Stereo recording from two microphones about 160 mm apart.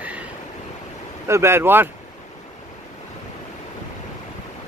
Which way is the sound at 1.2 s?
15° right (ahead or behind).